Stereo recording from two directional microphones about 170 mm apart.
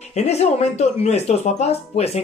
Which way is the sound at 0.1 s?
40° left (ahead or behind).